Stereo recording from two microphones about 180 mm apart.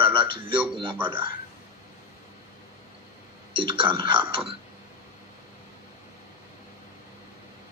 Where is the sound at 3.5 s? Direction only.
30° right (ahead or behind).